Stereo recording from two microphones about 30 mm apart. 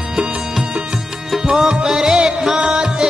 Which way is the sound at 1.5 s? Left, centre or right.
Centre.